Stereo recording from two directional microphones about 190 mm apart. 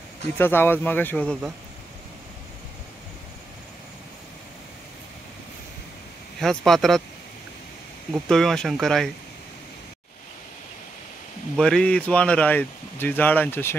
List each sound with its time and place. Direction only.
0.4 s speech: 10° left (ahead or behind)
6.4 s speech: centre (ahead or behind)
8.1 s speech: centre (ahead or behind)
11.5 s speech: 5° left (ahead or behind)